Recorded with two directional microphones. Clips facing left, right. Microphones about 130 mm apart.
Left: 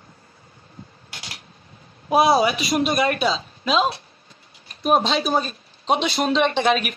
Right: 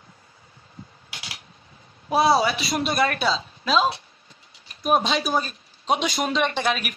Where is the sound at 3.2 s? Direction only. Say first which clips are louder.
Left 2 dB; 5° left (ahead or behind).